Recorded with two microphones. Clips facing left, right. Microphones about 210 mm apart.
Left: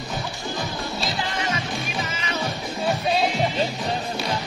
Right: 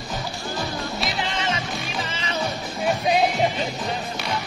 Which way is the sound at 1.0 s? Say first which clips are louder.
Right 1 dB; 20° right (ahead or behind).